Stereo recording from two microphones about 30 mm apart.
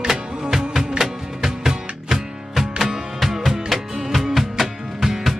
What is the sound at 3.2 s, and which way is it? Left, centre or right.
Music, centre.